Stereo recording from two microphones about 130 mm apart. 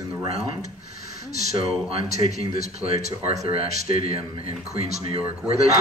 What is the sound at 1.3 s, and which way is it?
A man's voice, 55° right (ahead or behind).